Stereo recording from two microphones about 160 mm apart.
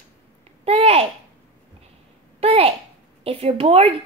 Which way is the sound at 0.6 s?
40° right (ahead or behind).